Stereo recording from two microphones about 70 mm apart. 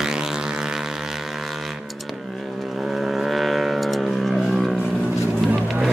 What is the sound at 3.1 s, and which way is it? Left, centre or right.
Vehicle, centre.